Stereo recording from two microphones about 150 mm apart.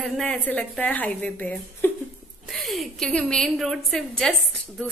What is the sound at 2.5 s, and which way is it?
A woman's voice, centre (ahead or behind).